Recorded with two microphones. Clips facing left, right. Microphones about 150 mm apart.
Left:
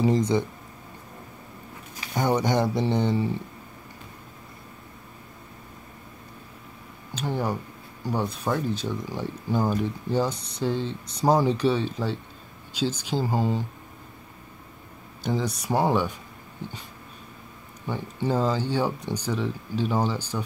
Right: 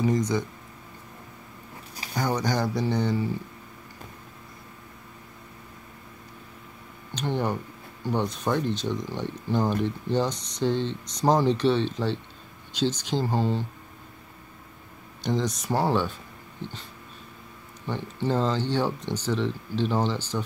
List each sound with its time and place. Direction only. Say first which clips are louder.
0.0 s speech: left 2 dB; 25° left (ahead or behind)
2.1 s speech: left 3 dB; 25° left (ahead or behind)
7.2 s speech: even; 5° left (ahead or behind)
15.2 s speech: even; 10° left (ahead or behind)
17.8 s speech: even; 10° left (ahead or behind)